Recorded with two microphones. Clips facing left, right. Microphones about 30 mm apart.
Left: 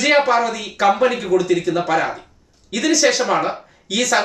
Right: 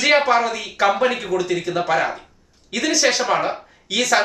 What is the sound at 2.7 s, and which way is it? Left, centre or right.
Speech, centre.